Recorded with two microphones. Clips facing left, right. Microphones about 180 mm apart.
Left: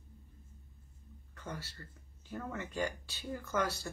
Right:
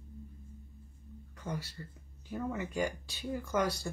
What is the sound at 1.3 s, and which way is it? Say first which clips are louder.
Speech: right 5 dB; 10° right (ahead or behind).